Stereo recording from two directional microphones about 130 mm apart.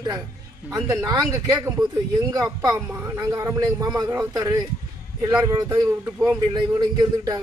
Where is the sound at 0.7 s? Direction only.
25° right (ahead or behind).